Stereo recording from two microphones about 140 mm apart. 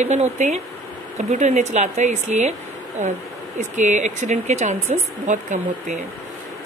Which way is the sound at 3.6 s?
60° right (ahead or behind).